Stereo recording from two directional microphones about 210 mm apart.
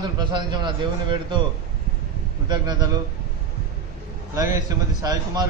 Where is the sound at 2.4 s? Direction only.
20° right (ahead or behind).